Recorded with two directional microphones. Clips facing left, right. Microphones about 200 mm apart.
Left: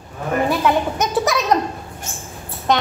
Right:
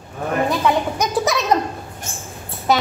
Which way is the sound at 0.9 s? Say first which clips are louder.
Left 1 dB; centre (ahead or behind).